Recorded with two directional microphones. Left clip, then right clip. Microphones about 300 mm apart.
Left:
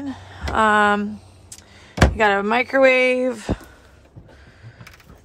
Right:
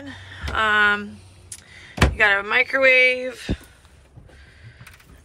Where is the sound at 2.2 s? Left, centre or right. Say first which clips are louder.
Right 2 dB; centre.